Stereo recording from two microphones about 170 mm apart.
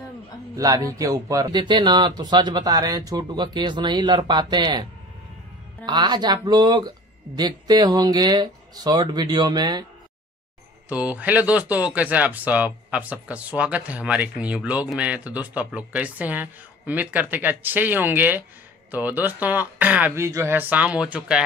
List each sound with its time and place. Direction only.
0.6 s speech: 20° right (ahead or behind)
5.9 s speech: 25° right (ahead or behind)
10.9 s speech: 10° right (ahead or behind)